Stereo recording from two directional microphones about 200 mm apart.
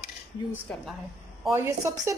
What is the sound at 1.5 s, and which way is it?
Speech, 15° right (ahead or behind).